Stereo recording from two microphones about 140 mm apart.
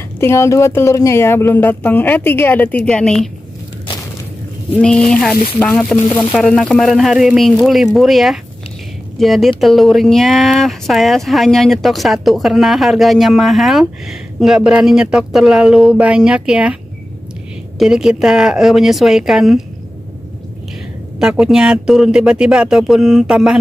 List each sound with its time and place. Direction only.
0.2 s speech: 20° left (ahead or behind)
4.7 s speech: 5° left (ahead or behind)
17.7 s speech: 5° right (ahead or behind)
21.2 s speech: 5° right (ahead or behind)